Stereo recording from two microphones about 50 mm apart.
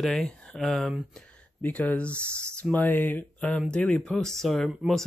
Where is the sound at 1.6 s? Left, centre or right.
Left.